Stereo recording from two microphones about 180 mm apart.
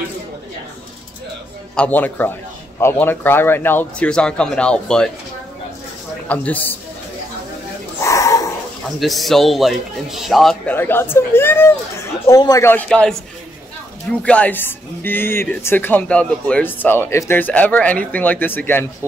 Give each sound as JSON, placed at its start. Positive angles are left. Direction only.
{"t": 1.8, "sound": "speech", "side_deg": 10}
{"t": 6.2, "sound": "speech", "side_deg": 10}
{"t": 8.0, "sound": "dog", "side_deg": 15}
{"t": 9.0, "sound": "speech", "side_deg": 0}
{"t": 10.7, "sound": "speech", "side_deg": 10}
{"t": 14.2, "sound": "speech", "side_deg": 5}